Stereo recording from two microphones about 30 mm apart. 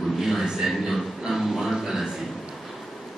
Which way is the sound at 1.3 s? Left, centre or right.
Centre.